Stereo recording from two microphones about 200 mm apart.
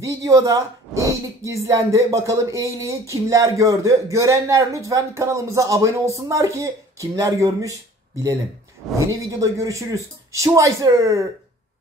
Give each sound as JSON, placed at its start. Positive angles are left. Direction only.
{"t": 0.0, "sound": "a woman's voice", "side_deg": -15}
{"t": 9.3, "sound": "a woman's voice", "side_deg": -15}